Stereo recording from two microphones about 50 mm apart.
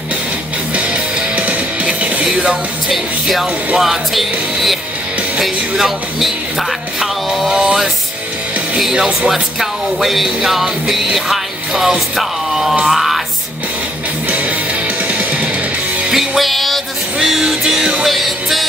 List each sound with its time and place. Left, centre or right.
0.7 s music: right
2.9 s music: centre
7.0 s a sound: centre
8.9 s speech: centre
9.3 s music: centre
12.2 s speech: centre
12.8 s music: centre
15.0 s music: right
16.1 s music: centre